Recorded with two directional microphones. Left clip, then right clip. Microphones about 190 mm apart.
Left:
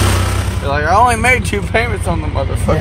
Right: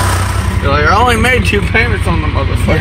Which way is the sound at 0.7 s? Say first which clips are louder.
Right 1 dB; 25° left (ahead or behind).